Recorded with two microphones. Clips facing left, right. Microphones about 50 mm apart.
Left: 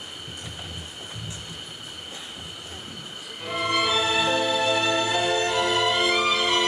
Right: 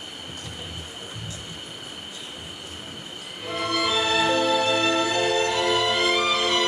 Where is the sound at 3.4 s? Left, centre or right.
Centre.